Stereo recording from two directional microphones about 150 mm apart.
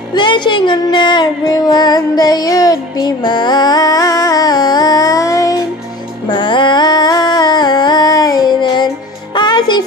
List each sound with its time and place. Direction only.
0.1 s music: 30° left (ahead or behind)